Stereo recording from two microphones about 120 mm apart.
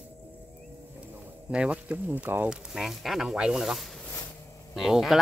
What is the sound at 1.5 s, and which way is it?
Speech, 10° right (ahead or behind).